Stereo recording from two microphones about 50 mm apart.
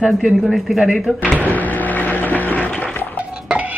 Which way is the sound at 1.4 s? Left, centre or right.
Left.